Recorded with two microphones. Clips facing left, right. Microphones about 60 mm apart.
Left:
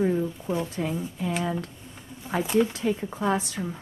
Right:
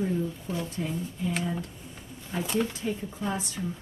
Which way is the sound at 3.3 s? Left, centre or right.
Left.